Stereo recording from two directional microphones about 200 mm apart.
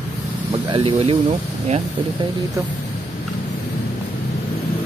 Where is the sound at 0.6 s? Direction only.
25° right (ahead or behind).